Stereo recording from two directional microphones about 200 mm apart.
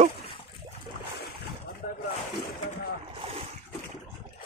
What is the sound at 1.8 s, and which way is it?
Boat, 45° left (ahead or behind).